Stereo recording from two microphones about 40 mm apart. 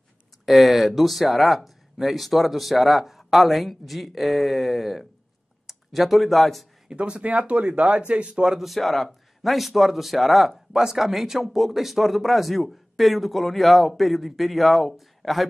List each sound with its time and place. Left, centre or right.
0.5 s speech: centre
6.9 s speech: right
8.5 s speech: centre